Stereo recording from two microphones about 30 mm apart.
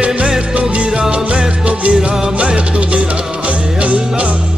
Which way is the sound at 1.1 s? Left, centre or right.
Right.